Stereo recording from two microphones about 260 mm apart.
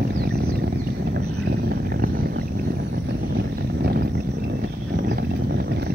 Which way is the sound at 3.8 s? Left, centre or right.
Right.